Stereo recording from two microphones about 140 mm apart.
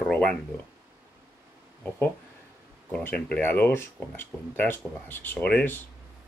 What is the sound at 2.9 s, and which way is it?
Speech, 10° left (ahead or behind).